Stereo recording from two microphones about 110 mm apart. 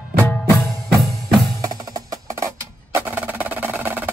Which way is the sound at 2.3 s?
25° right (ahead or behind).